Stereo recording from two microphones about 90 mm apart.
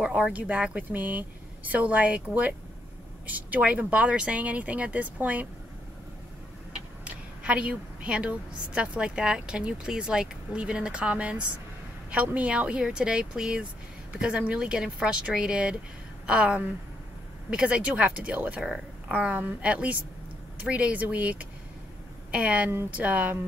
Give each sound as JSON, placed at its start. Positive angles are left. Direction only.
{"t": 0.0, "sound": "a woman's voice", "side_deg": -10}
{"t": 7.1, "sound": "a woman's voice", "side_deg": -10}